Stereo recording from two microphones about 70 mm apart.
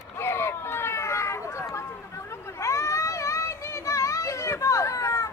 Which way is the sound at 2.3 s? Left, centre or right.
Left.